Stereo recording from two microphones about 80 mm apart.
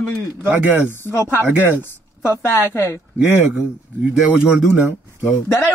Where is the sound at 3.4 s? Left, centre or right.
Right.